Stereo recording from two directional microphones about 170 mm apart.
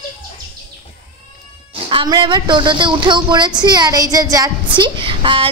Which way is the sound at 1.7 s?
30° right (ahead or behind).